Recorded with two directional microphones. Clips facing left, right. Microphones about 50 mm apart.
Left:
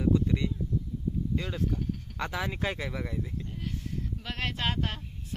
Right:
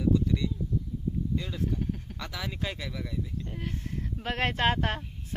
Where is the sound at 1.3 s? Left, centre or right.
Left.